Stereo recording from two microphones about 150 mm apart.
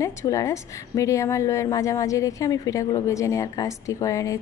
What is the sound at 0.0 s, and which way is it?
A woman's voice, 20° left (ahead or behind).